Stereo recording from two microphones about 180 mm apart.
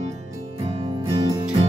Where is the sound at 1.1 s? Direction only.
20° right (ahead or behind).